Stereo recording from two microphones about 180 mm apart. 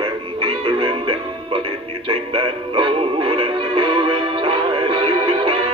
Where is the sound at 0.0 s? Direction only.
25° right (ahead or behind).